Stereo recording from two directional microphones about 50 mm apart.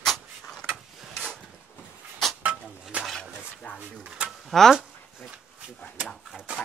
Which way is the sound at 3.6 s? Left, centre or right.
Left.